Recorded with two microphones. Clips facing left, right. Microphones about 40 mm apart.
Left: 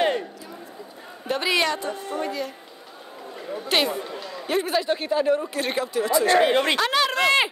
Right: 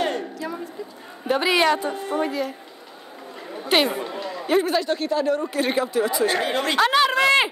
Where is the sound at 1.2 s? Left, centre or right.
Centre.